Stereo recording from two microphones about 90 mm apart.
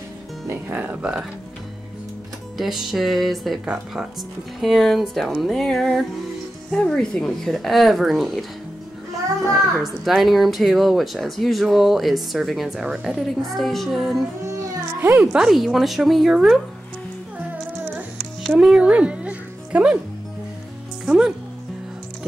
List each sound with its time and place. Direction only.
0.5 s speech: 20° right (ahead or behind)
2.5 s speech: centre (ahead or behind)
3.6 s speech: 10° right (ahead or behind)
4.6 s speech: centre (ahead or behind)
9.5 s speech: centre (ahead or behind)
14.5 s music: 30° right (ahead or behind)
15.3 s speech: 5° right (ahead or behind)
18.6 s music: 10° right (ahead or behind)
21.0 s music: 5° right (ahead or behind)